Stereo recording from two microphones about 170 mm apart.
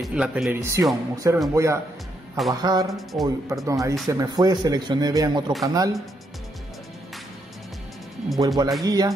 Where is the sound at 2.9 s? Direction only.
Centre (ahead or behind).